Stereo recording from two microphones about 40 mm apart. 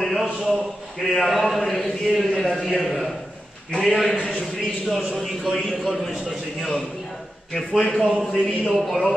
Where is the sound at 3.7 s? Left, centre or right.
Centre.